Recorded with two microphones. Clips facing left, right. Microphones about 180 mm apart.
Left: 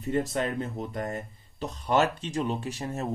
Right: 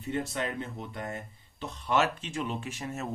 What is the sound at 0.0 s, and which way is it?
Speech, 40° left (ahead or behind).